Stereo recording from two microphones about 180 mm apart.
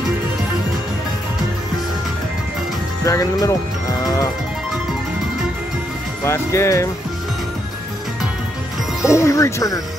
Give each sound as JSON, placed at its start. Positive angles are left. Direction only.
{"t": 3.0, "sound": "speech", "side_deg": 20}
{"t": 6.2, "sound": "speech", "side_deg": 15}
{"t": 9.1, "sound": "speech", "side_deg": 15}